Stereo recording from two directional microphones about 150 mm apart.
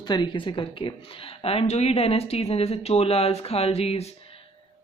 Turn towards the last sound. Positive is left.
turn(degrees=45)  # may be behind; listen again after turning